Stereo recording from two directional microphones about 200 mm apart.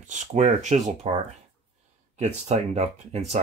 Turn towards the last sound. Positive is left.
turn(degrees=-35)  # may be behind; listen again after turning